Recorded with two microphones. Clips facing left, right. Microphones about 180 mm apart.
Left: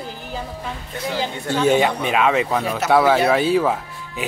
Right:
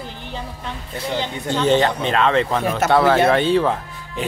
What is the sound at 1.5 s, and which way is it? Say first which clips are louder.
Speech: even; 10° left (ahead or behind).